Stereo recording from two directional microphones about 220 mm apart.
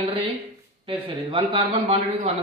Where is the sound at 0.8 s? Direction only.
20° right (ahead or behind).